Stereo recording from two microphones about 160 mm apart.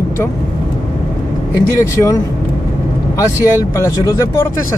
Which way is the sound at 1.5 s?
20° left (ahead or behind).